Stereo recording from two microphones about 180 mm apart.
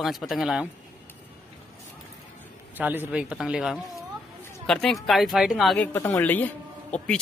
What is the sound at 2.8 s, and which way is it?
Speech, 10° right (ahead or behind).